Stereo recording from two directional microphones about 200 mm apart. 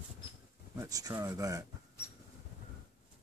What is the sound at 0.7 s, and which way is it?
Speech, 15° right (ahead or behind).